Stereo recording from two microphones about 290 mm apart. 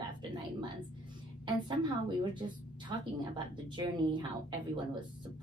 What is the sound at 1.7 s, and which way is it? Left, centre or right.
A woman's voice, centre.